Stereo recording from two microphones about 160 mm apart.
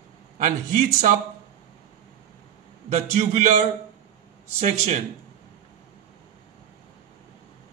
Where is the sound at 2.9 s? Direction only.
45° right (ahead or behind).